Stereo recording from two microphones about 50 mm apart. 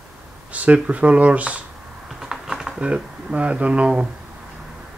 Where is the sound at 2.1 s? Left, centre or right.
Centre.